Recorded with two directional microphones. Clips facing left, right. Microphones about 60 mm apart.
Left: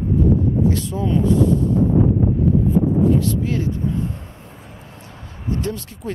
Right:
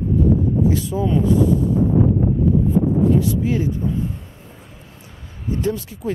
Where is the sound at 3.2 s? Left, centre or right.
Centre.